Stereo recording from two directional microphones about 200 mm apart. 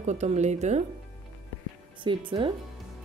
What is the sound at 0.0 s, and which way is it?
Speech, 35° right (ahead or behind).